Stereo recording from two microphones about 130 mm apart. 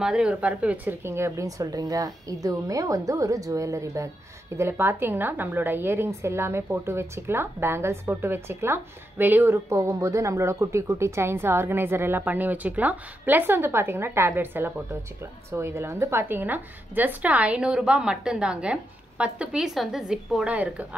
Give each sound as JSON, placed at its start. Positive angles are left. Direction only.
{"t": 0.0, "sound": "a woman's voice", "side_deg": -5}